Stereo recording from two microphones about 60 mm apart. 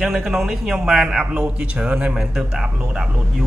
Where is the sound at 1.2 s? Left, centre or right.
Centre.